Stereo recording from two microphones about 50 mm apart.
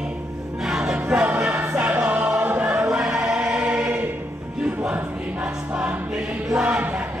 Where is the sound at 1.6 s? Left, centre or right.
Right.